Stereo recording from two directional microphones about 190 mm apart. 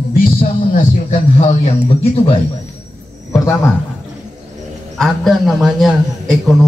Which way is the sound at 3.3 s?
15° left (ahead or behind).